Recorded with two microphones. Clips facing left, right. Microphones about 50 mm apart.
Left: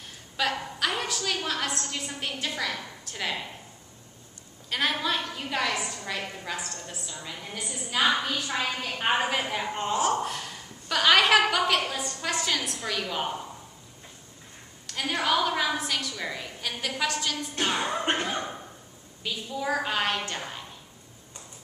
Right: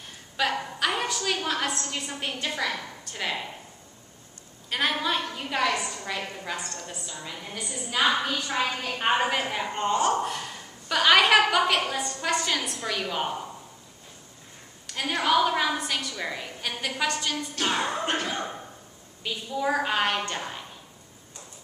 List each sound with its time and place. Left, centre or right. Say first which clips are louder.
0.4 s a woman's voice: right 2 dB; centre
4.6 s a woman's voice: right 1 dB; centre
14.9 s a woman's voice: right 2 dB; centre
17.6 s speech: right 1 dB; centre
18.0 s speech: left 1 dB; left
19.2 s a woman's voice: right 3 dB; centre